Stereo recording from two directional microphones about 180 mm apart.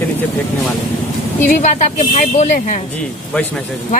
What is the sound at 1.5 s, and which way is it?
Speech, 45° left (ahead or behind).